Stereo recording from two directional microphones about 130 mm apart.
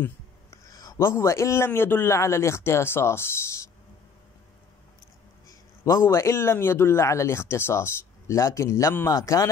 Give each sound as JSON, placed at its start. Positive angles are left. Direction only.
{"t": 0.5, "sound": "a man's voice", "side_deg": 30}
{"t": 5.5, "sound": "a man's voice", "side_deg": 20}